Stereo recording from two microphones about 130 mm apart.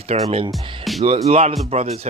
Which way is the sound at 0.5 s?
Centre (ahead or behind).